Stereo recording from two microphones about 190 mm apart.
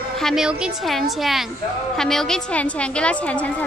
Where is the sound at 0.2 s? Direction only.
Centre (ahead or behind).